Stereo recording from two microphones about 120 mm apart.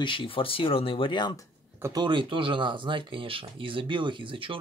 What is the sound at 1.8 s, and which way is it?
Speech, 35° right (ahead or behind).